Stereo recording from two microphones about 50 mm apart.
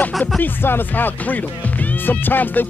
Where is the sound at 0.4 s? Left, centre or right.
Left.